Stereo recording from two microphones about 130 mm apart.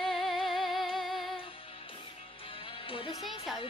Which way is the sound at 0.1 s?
Centre (ahead or behind).